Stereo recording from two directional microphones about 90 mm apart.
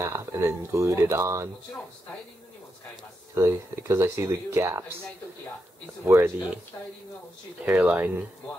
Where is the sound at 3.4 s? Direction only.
30° right (ahead or behind).